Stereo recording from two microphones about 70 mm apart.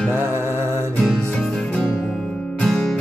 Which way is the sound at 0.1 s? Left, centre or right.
Right.